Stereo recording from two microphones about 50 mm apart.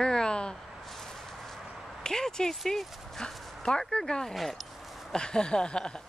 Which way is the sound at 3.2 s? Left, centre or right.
Centre.